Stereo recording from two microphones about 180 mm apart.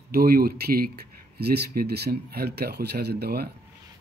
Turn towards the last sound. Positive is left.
turn(degrees=-60)  # may be behind; listen again after turning